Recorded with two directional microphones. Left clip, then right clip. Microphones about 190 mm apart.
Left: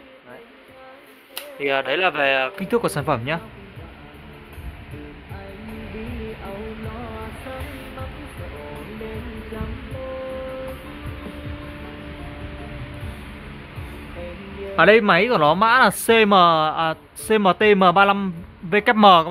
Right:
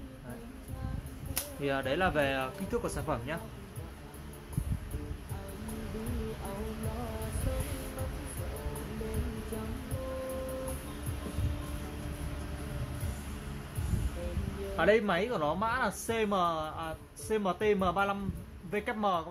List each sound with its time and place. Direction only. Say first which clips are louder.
1.6 s speech: left 11 dB; 50° left (ahead or behind)
14.8 s speech: left 13 dB; 60° left (ahead or behind)